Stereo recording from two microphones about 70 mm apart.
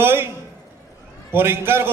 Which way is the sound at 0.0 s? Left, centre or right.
Right.